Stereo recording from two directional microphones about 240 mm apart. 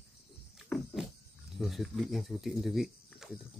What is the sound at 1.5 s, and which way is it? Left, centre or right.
Speech, centre.